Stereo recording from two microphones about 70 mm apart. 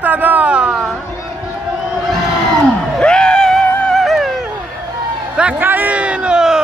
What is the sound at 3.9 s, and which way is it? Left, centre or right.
Music, centre.